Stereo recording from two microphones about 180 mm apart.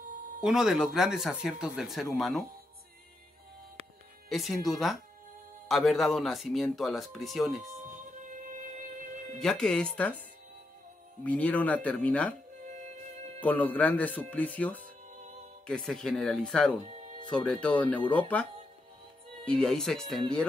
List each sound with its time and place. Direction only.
0.4 s speech: 5° right (ahead or behind)
4.3 s speech: centre (ahead or behind)
8.2 s music: 45° right (ahead or behind)
9.4 s speech: 5° left (ahead or behind)
11.2 s speech: 10° left (ahead or behind)
12.6 s music: 40° right (ahead or behind)
13.4 s speech: 10° left (ahead or behind)
16.8 s music: 40° right (ahead or behind)
17.3 s speech: 5° left (ahead or behind)